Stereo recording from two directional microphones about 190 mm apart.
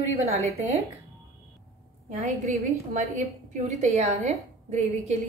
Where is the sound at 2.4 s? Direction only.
35° right (ahead or behind).